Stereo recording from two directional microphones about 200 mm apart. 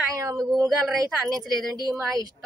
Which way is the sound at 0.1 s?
15° right (ahead or behind).